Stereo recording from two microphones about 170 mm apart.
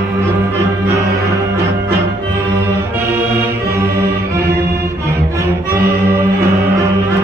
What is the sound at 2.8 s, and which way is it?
Music, 15° right (ahead or behind).